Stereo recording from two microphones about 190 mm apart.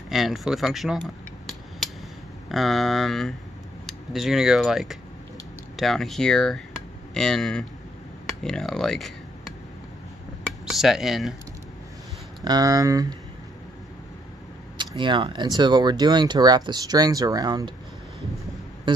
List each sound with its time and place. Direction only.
0.1 s a sound: centre (ahead or behind)
2.5 s speech: centre (ahead or behind)
10.4 s speech: centre (ahead or behind)
12.4 s speech: 20° right (ahead or behind)
15.0 s speech: 25° right (ahead or behind)
18.9 s a sound: 25° right (ahead or behind)